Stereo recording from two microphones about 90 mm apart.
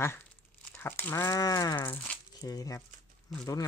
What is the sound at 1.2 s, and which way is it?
Speech, 40° left (ahead or behind).